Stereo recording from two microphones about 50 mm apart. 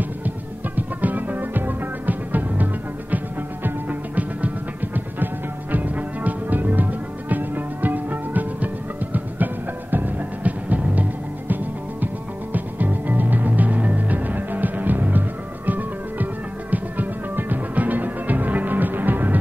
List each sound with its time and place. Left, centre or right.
0.7 s music: right
12.5 s music: right